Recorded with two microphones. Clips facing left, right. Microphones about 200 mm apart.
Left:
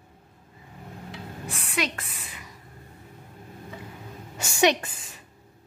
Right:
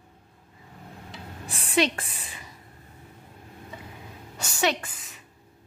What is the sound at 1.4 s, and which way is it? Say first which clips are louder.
A woman's voice: right 6 dB; 30° right (ahead or behind).